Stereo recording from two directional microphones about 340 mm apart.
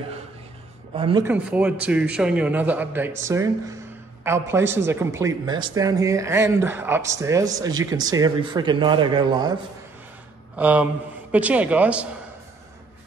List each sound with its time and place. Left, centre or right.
0.9 s a man's voice: centre